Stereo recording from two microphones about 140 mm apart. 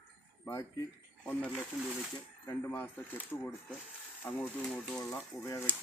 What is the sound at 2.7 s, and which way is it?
Speech, 10° left (ahead or behind).